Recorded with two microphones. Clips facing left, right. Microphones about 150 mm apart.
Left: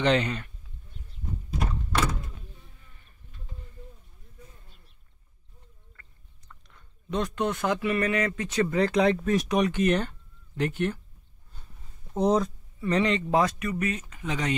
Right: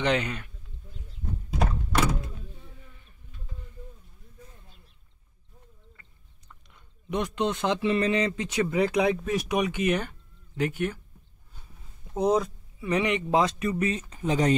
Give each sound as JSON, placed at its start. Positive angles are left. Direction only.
{"t": 0.0, "sound": "speech", "side_deg": -10}
{"t": 6.7, "sound": "speech", "side_deg": -15}
{"t": 12.1, "sound": "speech", "side_deg": 0}
{"t": 13.6, "sound": "speech", "side_deg": -30}